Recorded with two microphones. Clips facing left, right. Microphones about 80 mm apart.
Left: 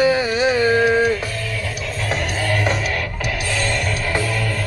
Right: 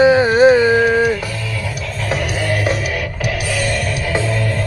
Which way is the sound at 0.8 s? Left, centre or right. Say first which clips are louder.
Right 2 dB; centre.